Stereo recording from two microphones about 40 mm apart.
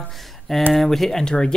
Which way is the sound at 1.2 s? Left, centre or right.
Left.